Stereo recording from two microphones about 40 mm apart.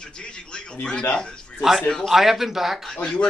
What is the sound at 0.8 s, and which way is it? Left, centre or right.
Speech, left.